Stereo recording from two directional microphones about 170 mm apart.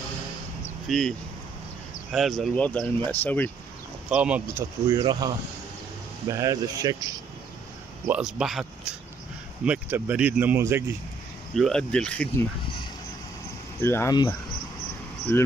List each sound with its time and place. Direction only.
0.8 s speech: centre (ahead or behind)
2.1 s speech: centre (ahead or behind)
4.1 s speech: 5° right (ahead or behind)
4.8 s speech: 20° right (ahead or behind)
8.1 s speech: 5° right (ahead or behind)
11.5 s speech: 5° left (ahead or behind)
13.7 s speech: 15° left (ahead or behind)
15.3 s speech: 10° left (ahead or behind)